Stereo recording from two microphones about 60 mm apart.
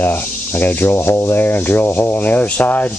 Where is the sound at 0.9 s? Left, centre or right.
Left.